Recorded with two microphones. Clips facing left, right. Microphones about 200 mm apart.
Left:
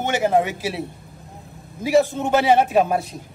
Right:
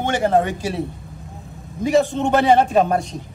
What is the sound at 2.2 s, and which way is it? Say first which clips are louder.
Speech: right 2 dB; 5° left (ahead or behind).